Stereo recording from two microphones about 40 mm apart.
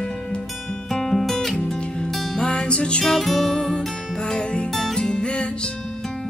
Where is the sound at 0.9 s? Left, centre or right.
Centre.